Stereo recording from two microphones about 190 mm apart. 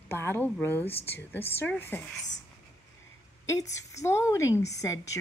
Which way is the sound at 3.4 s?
15° left (ahead or behind).